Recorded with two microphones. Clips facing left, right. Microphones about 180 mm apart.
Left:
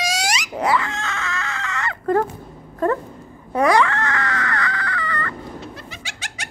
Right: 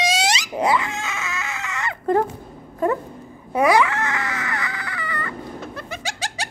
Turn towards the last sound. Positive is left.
turn(degrees=-35)  # may be behind; listen again after turning